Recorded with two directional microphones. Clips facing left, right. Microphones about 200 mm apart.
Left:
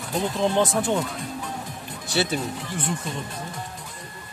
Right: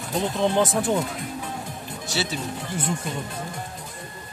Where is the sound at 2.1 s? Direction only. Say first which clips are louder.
Left 4 dB; 55° left (ahead or behind).